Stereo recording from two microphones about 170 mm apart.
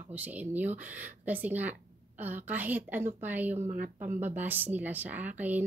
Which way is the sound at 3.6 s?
50° right (ahead or behind).